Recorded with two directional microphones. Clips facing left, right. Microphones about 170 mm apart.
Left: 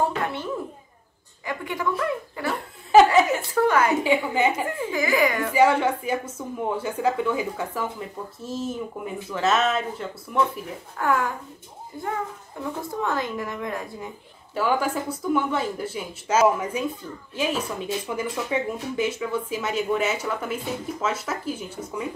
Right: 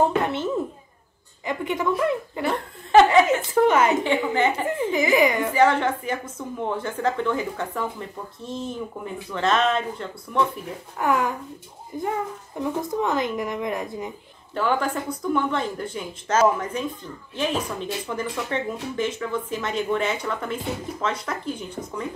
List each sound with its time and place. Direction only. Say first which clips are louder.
0.0 s a child's voice: right 4 dB; 25° right (ahead or behind)
4.0 s a woman's voice: even; 10° left (ahead or behind)
4.6 s a woman's voice: right 3 dB; 20° right (ahead or behind)
5.5 s a woman's voice: even; 10° left (ahead or behind)
11.0 s speech: right 1 dB; 15° right (ahead or behind)
14.5 s a woman's voice: even; 5° left (ahead or behind)